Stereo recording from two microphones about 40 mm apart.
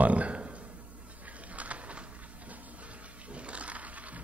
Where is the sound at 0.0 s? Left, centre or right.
Right.